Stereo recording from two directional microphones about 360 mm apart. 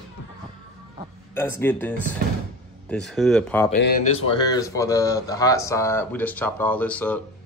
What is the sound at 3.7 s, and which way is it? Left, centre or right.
Speech, left.